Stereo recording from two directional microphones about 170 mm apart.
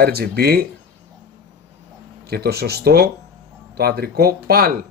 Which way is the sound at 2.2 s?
65° right (ahead or behind).